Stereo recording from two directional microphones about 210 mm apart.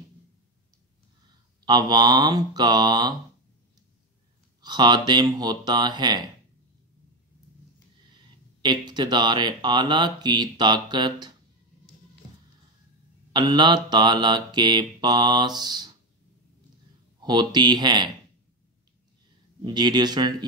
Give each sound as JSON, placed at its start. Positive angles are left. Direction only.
{"t": 1.7, "sound": "speech", "side_deg": -20}
{"t": 4.6, "sound": "speech", "side_deg": -20}
{"t": 8.6, "sound": "speech", "side_deg": -20}
{"t": 13.3, "sound": "speech", "side_deg": -20}
{"t": 17.2, "sound": "speech", "side_deg": -20}
{"t": 19.6, "sound": "speech", "side_deg": -20}